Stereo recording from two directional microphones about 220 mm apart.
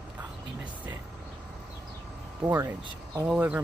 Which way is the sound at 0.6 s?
5° right (ahead or behind).